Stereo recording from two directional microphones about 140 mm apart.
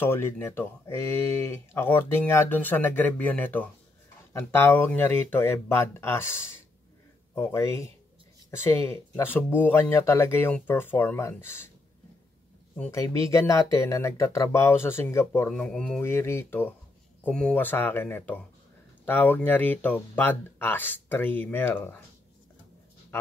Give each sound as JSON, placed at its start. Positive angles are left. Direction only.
{"t": 0.0, "sound": "speech", "side_deg": 15}
{"t": 12.9, "sound": "speech", "side_deg": 20}
{"t": 15.5, "sound": "speech", "side_deg": 5}
{"t": 16.0, "sound": "speech", "side_deg": 20}